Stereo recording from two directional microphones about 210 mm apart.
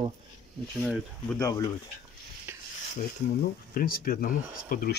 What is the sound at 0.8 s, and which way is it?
Speech, 5° right (ahead or behind).